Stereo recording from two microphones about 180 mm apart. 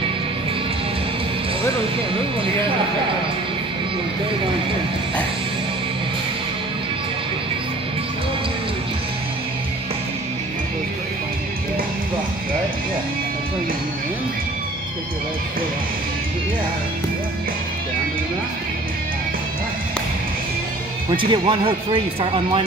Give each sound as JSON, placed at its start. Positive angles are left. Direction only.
{"t": 21.1, "sound": "speech", "side_deg": -25}